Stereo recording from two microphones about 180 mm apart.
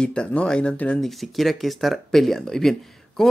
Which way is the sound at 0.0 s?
5° left (ahead or behind).